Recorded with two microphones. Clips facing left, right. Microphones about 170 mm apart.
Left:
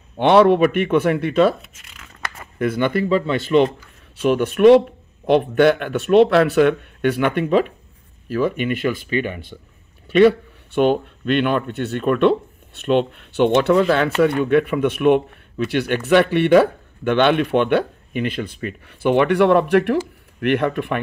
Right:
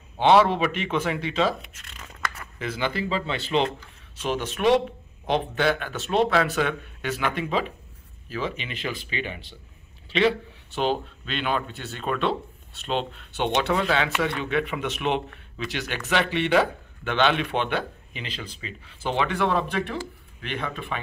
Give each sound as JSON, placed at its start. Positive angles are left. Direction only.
{"t": 0.2, "sound": "speech", "side_deg": 60}
{"t": 1.6, "sound": "tearing", "side_deg": 5}
{"t": 2.6, "sound": "speech", "side_deg": 55}